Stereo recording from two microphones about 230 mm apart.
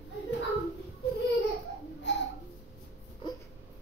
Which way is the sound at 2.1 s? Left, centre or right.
Left.